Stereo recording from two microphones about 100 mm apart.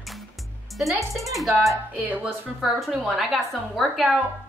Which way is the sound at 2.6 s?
Centre (ahead or behind).